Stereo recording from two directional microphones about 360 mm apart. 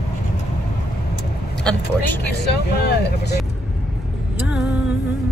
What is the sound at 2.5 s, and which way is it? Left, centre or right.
Speech, left.